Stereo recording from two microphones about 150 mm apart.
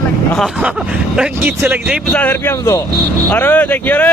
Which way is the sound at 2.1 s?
15° left (ahead or behind).